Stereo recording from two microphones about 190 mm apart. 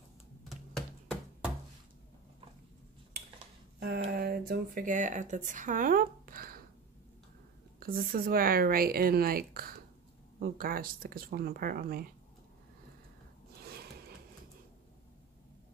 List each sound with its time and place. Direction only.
3.8 s speech: 60° right (ahead or behind)
7.8 s speech: 50° right (ahead or behind)
13.6 s a sound: 55° right (ahead or behind)